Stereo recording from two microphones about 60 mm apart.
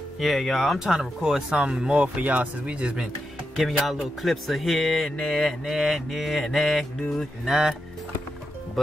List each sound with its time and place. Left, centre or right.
0.2 s speech: centre
0.7 s speech: centre
3.5 s speech: centre
7.4 s speech: centre